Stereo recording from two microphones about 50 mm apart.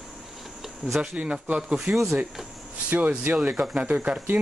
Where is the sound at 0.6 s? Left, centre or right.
Centre.